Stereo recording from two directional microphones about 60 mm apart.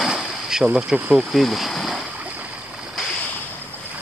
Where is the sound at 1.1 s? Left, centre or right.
Centre.